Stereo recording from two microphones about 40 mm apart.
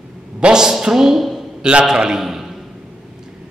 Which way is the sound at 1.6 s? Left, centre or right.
Right.